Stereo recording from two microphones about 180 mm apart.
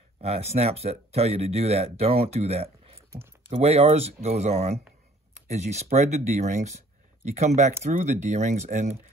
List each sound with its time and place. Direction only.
0.2 s speech: 35° right (ahead or behind)